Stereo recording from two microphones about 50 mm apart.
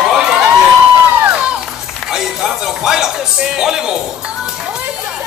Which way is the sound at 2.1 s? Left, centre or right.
Centre.